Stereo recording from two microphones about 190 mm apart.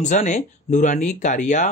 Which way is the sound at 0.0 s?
40° left (ahead or behind).